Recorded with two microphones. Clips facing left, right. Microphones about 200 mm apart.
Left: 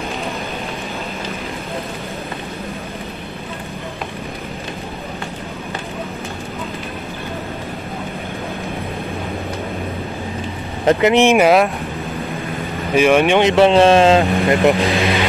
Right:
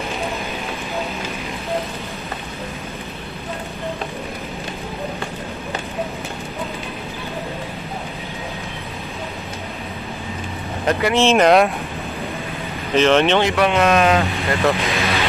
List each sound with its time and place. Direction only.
10.9 s speech: 20° left (ahead or behind); by 11.7 s 5° left (ahead or behind)
12.9 s speech: 10° left (ahead or behind); by 14.2 s 30° left (ahead or behind)
14.3 s speech: 15° left (ahead or behind)